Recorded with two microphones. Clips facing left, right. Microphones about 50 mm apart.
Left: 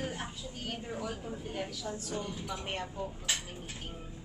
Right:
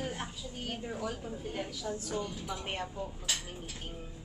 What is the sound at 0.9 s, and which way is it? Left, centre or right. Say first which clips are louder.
Speech: even; centre.